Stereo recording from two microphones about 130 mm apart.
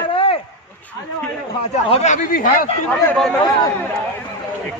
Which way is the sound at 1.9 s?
70° left (ahead or behind).